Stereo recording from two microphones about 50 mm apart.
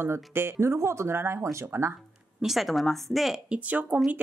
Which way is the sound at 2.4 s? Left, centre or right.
Centre.